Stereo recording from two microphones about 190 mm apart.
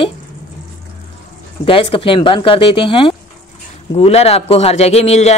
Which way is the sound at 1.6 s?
30° left (ahead or behind).